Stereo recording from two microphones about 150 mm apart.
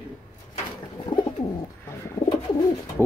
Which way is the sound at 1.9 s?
20° left (ahead or behind).